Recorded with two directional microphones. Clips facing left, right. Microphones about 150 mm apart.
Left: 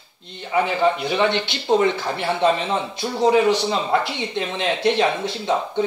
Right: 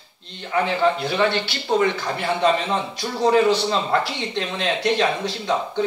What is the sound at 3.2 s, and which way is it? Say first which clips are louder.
A man's voice: even; 15° left (ahead or behind).